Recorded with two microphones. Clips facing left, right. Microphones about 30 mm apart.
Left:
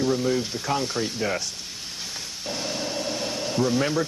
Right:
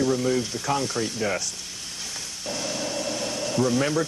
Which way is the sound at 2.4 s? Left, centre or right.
Left.